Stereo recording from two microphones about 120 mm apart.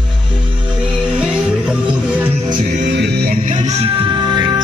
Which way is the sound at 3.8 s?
45° right (ahead or behind).